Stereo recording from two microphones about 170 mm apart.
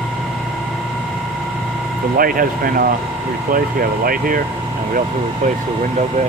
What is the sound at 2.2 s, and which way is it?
Speech, 55° right (ahead or behind).